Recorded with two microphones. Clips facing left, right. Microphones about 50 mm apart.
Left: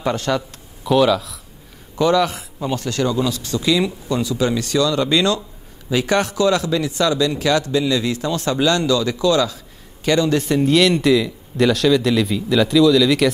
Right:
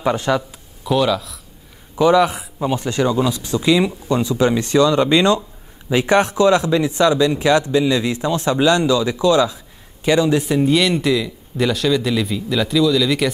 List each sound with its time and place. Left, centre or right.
0.0 s speech: centre
0.8 s speech: centre
2.0 s speech: centre